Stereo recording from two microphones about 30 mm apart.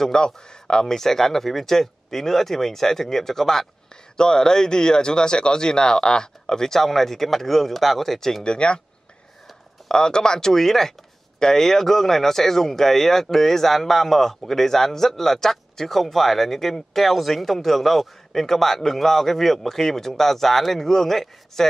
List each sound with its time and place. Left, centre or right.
0.0 s speech: left
0.8 s speech: centre
4.2 s speech: left
6.4 s speech: centre
8.5 s speech: left
9.8 s speech: left
10.5 s speech: centre